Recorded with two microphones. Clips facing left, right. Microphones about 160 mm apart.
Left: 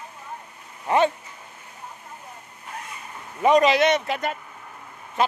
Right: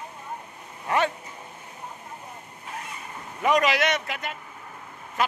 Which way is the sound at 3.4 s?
25° left (ahead or behind).